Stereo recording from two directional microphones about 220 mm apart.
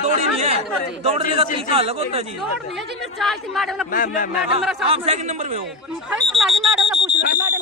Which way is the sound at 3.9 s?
40° left (ahead or behind).